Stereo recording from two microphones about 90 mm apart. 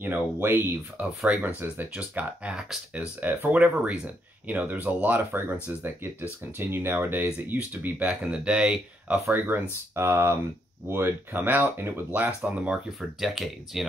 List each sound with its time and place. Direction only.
0.0 s speech: 25° right (ahead or behind)
13.2 s speech: centre (ahead or behind)